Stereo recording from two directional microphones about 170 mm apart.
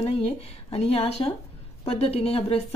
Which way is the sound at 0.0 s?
35° left (ahead or behind).